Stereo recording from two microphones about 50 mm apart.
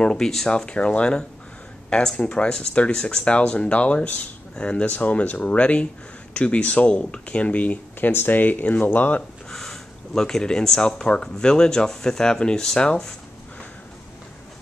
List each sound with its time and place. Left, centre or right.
0.0 s speech: centre; by 8.1 s left
8.1 s speech: left
9.5 s speech: centre